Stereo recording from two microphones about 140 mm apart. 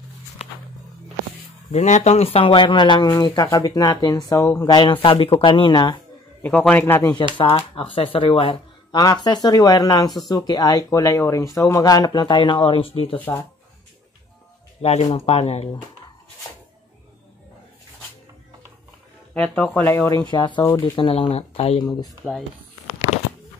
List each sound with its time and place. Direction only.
1.7 s speech: 55° left (ahead or behind); by 4.7 s 20° left (ahead or behind)
4.7 s speech: 35° left (ahead or behind)
6.6 s speech: 10° left (ahead or behind)
7.0 s speech: 25° left (ahead or behind)
7.3 s speech: 40° left (ahead or behind)
8.9 s speech: 30° left (ahead or behind)
14.8 s speech: 50° left (ahead or behind)
19.3 s speech: 10° left (ahead or behind)
20.1 s speech: 25° left (ahead or behind)
20.6 s speech: 20° left (ahead or behind)
20.9 s speech: 40° left (ahead or behind)